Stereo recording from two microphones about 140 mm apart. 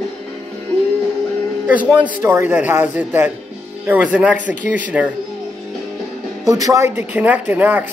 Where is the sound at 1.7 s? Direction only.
10° right (ahead or behind).